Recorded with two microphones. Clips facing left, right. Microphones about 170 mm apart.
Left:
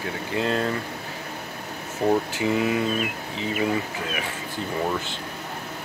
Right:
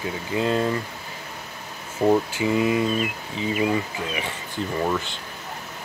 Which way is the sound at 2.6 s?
Centre (ahead or behind).